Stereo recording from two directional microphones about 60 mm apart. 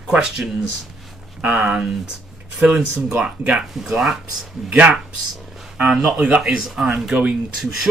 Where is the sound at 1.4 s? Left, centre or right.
Right.